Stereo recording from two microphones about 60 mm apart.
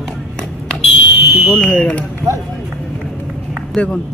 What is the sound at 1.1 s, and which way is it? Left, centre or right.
Fire alarm, right.